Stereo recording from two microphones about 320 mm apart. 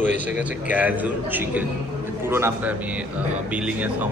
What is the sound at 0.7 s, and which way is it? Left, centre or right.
A man's voice, centre.